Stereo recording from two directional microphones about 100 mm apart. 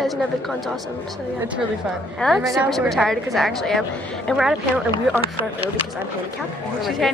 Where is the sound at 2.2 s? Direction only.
10° left (ahead or behind).